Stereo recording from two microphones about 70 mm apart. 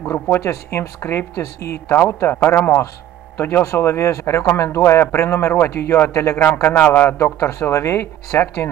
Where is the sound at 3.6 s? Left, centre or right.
Left.